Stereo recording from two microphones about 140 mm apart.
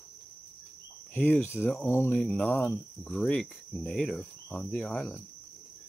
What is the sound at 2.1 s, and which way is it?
Speech, 5° left (ahead or behind).